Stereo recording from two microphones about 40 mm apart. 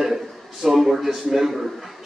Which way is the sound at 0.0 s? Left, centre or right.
Centre.